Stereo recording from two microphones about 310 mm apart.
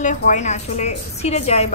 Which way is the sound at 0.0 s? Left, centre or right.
Left.